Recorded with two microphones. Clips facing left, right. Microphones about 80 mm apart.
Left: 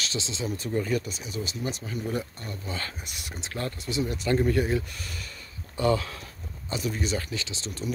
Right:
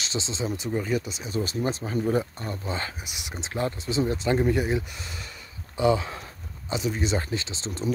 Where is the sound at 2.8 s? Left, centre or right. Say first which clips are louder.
Right 2 dB; centre.